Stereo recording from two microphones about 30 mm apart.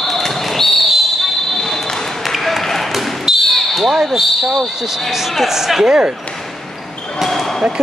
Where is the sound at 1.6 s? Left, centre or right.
Centre.